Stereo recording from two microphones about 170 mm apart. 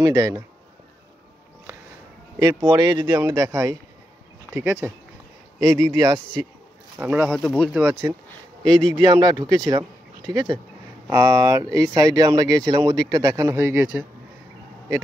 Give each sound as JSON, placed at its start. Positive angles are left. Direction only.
{"t": 0.0, "sound": "speech", "side_deg": -20}
{"t": 2.3, "sound": "speech", "side_deg": -15}
{"t": 2.7, "sound": "speech", "side_deg": -25}
{"t": 5.6, "sound": "speech", "side_deg": -25}
{"t": 7.0, "sound": "speech", "side_deg": -10}
{"t": 8.7, "sound": "speech", "side_deg": -25}